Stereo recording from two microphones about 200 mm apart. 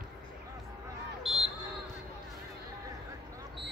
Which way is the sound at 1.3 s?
Centre (ahead or behind).